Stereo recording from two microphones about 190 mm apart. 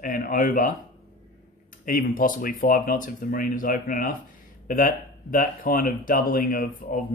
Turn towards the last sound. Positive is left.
turn(degrees=50)  # may be behind; listen again after turning